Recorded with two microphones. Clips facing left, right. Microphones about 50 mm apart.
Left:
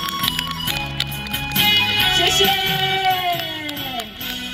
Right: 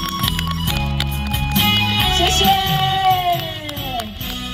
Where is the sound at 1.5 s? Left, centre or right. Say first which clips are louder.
Even; centre.